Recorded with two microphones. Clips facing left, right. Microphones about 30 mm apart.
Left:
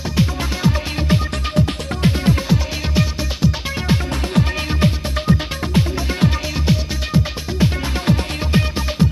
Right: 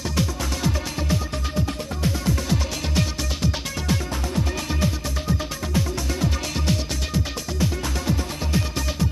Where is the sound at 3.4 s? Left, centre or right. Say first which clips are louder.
Left 7 dB; centre.